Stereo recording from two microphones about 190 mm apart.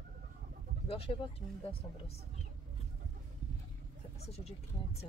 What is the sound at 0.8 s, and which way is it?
Pigeon, 30° left (ahead or behind).